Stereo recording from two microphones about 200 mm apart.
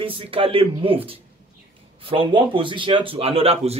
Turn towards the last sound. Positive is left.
turn(degrees=-30)  # may be behind; listen again after turning